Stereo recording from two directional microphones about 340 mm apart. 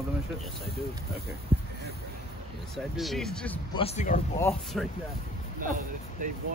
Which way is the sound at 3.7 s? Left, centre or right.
Centre.